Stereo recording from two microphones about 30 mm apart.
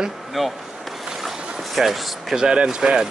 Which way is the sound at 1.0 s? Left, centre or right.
Centre.